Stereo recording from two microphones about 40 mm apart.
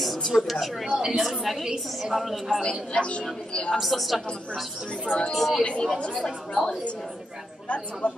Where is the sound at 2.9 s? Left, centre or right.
Left.